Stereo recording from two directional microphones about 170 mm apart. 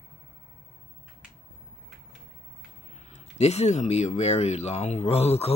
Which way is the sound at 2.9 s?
40° left (ahead or behind).